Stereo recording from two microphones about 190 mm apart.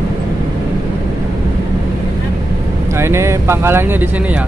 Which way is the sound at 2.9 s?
15° right (ahead or behind).